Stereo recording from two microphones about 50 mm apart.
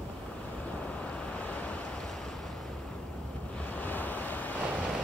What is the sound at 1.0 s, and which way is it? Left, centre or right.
Waves, left.